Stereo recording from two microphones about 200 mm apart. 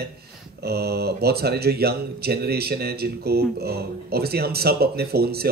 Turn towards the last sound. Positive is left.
turn(degrees=-50)  # may be behind; listen again after turning